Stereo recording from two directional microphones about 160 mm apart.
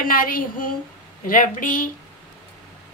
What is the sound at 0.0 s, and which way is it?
A woman's voice, 60° left (ahead or behind).